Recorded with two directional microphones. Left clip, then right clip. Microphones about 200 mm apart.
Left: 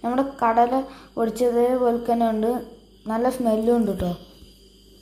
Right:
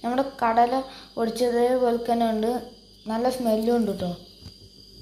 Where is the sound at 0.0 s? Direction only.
Centre (ahead or behind).